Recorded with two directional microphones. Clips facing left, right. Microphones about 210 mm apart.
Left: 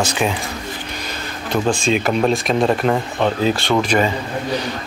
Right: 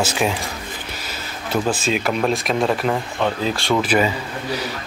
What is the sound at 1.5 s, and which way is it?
Speech, 5° right (ahead or behind).